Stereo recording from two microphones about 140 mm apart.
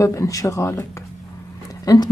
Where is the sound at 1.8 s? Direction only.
30° left (ahead or behind).